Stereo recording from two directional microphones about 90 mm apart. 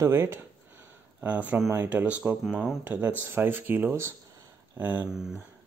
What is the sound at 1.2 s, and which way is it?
Speech, 15° right (ahead or behind).